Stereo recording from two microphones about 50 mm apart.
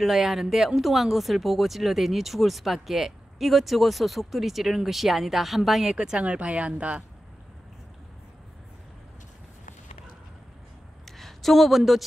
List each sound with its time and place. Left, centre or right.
0.0 s speech: centre
6.0 s speech: right
11.1 s a sound: centre